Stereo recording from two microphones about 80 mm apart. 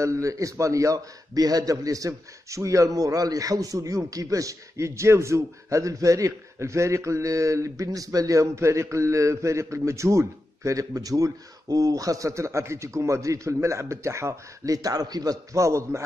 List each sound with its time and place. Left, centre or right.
0.0 s a man's voice: right
15.5 s a man's voice: right